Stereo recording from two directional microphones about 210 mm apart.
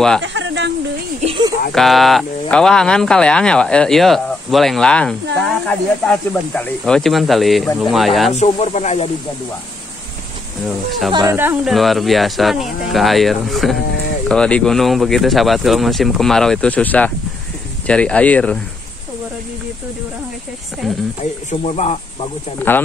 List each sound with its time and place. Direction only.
0.2 s a sound: 60° right (ahead or behind)
1.2 s a sound: 25° right (ahead or behind)
1.7 s speech: centre (ahead or behind)
8.3 s speech: 35° left (ahead or behind)
11.2 s speech: 10° right (ahead or behind)
21.2 s speech: 30° left (ahead or behind)
22.7 s speech: 10° left (ahead or behind)